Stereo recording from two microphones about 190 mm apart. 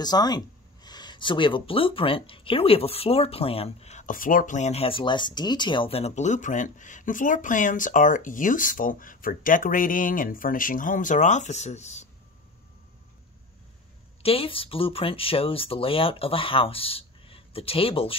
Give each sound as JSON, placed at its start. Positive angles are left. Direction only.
{"t": 0.0, "sound": "speech", "side_deg": 20}
{"t": 14.2, "sound": "speech", "side_deg": 30}